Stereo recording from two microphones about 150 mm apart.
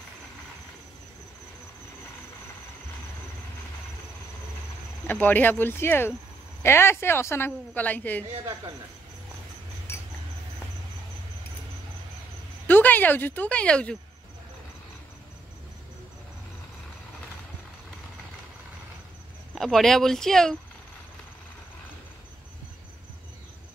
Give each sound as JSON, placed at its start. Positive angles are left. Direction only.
{"t": 5.0, "sound": "speech", "side_deg": 10}
{"t": 12.6, "sound": "speech", "side_deg": 10}
{"t": 19.5, "sound": "speech", "side_deg": 0}